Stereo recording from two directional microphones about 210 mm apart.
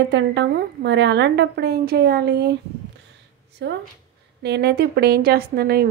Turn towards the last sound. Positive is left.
turn(degrees=-45)  # may be behind; listen again after turning